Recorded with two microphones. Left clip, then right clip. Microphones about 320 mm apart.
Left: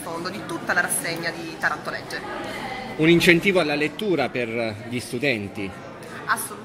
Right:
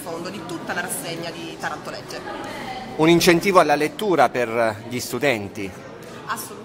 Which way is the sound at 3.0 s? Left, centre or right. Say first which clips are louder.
Right 1 dB; centre.